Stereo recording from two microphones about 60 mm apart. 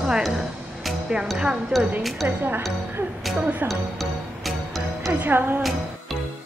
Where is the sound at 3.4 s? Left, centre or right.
Right.